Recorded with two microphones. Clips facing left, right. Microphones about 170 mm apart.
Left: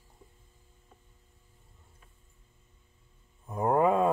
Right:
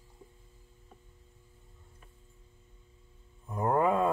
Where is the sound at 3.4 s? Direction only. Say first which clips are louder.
Left 2 dB; 15° left (ahead or behind).